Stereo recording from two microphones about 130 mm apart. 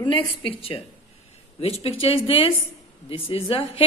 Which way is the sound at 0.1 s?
45° left (ahead or behind).